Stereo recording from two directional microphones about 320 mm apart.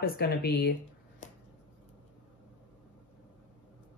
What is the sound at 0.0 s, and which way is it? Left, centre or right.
Speech, left.